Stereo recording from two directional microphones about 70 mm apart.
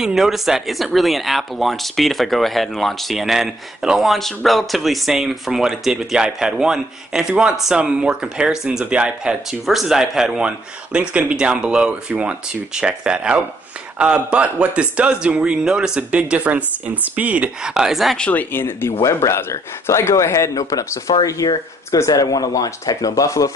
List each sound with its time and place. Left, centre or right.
0.0 s speech: centre; by 17.5 s right
17.6 s speech: centre
18.3 s a man's voice: left